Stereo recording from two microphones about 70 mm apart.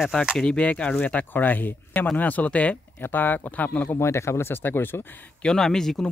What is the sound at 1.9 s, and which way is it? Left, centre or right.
Speech, centre.